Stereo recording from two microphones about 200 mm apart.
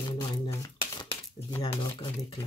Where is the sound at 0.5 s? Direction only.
15° left (ahead or behind).